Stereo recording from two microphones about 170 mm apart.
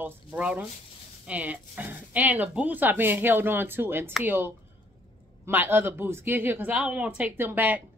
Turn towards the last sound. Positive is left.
turn(degrees=-10)  # may be behind; listen again after turning